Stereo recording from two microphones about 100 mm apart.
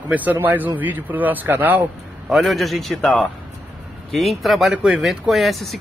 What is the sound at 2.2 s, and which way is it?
A man's voice, centre (ahead or behind).